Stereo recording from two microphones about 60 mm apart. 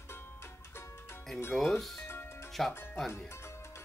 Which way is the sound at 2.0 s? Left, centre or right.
Left.